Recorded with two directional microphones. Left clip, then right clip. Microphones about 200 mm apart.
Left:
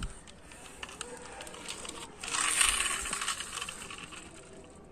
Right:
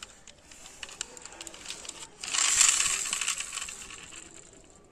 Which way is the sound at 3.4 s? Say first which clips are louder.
Right 1 dB; 25° right (ahead or behind).